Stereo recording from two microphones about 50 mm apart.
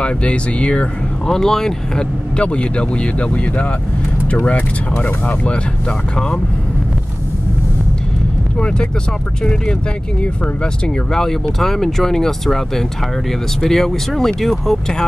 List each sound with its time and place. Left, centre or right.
0.0 s speech: left
1.2 s speech: centre
2.3 s speech: left
8.5 s speech: left
11.1 s speech: centre